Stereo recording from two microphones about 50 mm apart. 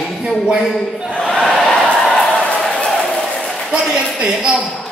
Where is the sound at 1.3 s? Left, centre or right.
Centre.